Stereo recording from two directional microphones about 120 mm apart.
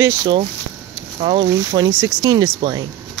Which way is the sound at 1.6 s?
35° right (ahead or behind).